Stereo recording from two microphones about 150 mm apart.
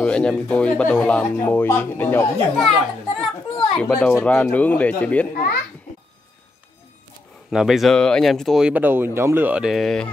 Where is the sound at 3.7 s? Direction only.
5° left (ahead or behind).